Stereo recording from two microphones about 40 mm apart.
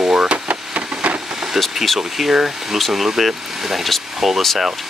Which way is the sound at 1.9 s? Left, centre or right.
Centre.